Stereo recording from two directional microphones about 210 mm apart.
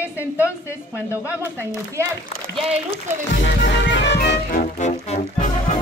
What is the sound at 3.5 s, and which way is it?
Music, 55° left (ahead or behind).